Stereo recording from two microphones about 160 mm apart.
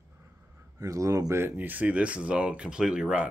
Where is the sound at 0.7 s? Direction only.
20° right (ahead or behind).